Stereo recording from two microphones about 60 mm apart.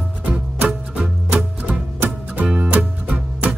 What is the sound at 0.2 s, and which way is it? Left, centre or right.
Music, right.